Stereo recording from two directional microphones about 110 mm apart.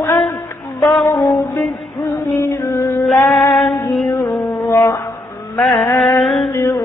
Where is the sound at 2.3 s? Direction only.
20° left (ahead or behind).